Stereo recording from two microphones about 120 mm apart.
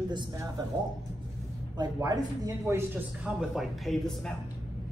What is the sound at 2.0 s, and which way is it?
Speech, 35° right (ahead or behind).